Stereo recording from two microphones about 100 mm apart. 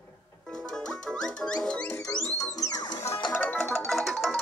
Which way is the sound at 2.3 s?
35° left (ahead or behind).